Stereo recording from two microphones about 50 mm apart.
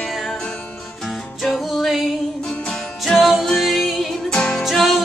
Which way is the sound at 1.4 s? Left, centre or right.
Centre.